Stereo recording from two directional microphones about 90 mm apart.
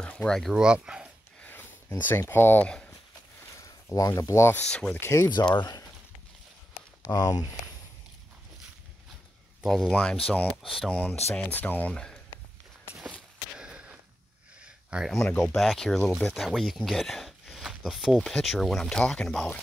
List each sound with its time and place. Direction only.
0.0 s a sound: 15° left (ahead or behind)
0.4 s speech: 5° right (ahead or behind)
1.4 s a sound: 20° left (ahead or behind)
3.5 s speech: 40° left (ahead or behind)
4.6 s speech: 15° left (ahead or behind)
5.0 s speech: 30° left (ahead or behind)
5.6 s speech: 45° left (ahead or behind)
7.1 s speech: 40° left (ahead or behind)
9.7 s speech: 5° right (ahead or behind)
9.9 s speech: 10° left (ahead or behind)
10.9 s speech: 15° left (ahead or behind)
13.6 s a sound: 10° right (ahead or behind)
15.4 s speech: centre (ahead or behind)